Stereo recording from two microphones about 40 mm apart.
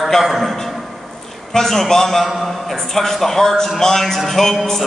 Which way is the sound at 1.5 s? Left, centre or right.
Centre.